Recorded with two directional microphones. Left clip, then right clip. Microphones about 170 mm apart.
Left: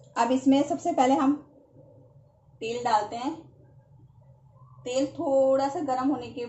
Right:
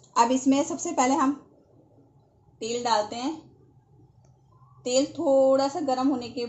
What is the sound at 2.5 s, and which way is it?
Speech, 70° right (ahead or behind).